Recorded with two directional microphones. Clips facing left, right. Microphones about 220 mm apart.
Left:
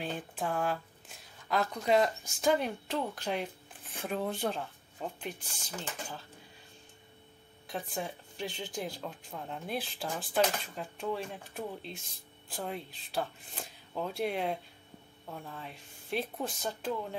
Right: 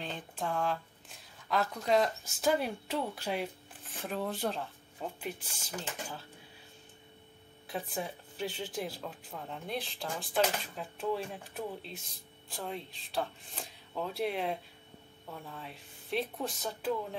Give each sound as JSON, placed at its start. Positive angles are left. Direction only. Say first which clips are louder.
{"t": 0.0, "sound": "speech", "louder": "left 2 dB", "side_deg": 5}
{"t": 7.6, "sound": "speech", "louder": "even", "side_deg": 0}